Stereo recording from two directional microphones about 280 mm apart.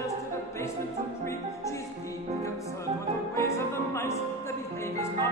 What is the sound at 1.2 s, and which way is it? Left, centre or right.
Music, centre.